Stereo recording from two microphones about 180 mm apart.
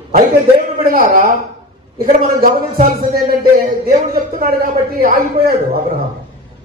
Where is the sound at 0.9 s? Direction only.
50° right (ahead or behind).